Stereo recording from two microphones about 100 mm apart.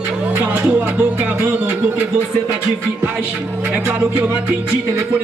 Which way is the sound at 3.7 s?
15° right (ahead or behind).